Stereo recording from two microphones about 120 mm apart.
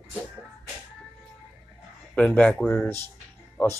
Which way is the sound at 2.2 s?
10° left (ahead or behind).